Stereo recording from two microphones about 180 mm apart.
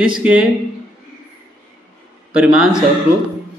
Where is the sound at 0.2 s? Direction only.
5° right (ahead or behind).